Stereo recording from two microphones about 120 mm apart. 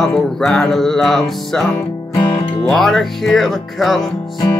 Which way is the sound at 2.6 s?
Centre (ahead or behind).